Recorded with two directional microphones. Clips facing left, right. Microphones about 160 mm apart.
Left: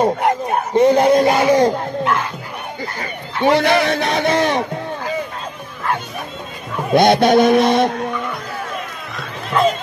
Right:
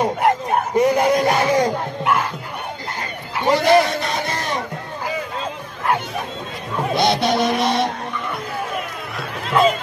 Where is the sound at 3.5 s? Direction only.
70° left (ahead or behind).